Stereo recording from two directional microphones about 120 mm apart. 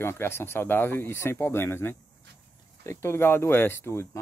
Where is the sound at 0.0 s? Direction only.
20° left (ahead or behind).